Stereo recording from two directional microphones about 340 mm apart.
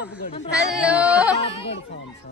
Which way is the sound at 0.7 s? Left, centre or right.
Centre.